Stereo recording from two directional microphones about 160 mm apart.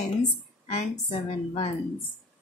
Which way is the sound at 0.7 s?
40° left (ahead or behind).